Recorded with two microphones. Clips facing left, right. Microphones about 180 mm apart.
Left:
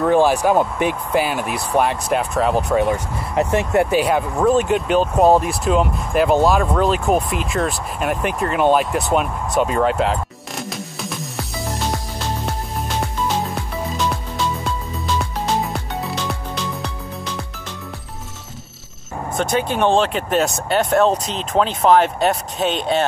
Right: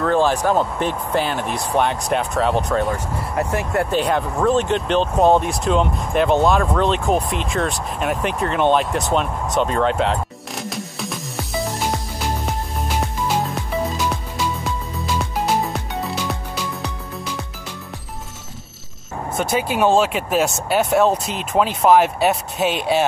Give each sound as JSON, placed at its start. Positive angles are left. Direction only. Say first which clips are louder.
{"t": 0.0, "sound": "speech", "louder": "left 3 dB", "side_deg": 15}
{"t": 2.9, "sound": "speech", "louder": "left 2 dB", "side_deg": 20}
{"t": 3.9, "sound": "speech", "louder": "left 2 dB", "side_deg": 5}
{"t": 15.1, "sound": "music", "louder": "right 1 dB", "side_deg": 0}
{"t": 19.3, "sound": "speech", "louder": "left 1 dB", "side_deg": -5}